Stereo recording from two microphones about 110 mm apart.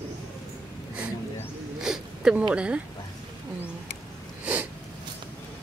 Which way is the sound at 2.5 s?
10° right (ahead or behind).